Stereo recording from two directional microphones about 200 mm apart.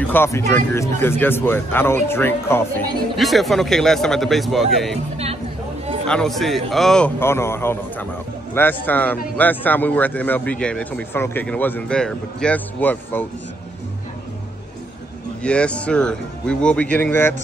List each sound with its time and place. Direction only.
0.0 s a man's voice: 10° left (ahead or behind)
3.2 s a man's voice: centre (ahead or behind)
5.1 s speech: 30° right (ahead or behind)
6.0 s a man's voice: 5° left (ahead or behind)
15.4 s a man's voice: 5° left (ahead or behind)